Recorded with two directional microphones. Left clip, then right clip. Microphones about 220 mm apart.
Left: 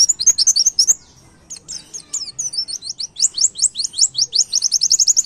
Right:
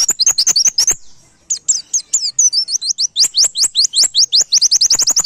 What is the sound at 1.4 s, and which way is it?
Chirp, 30° right (ahead or behind).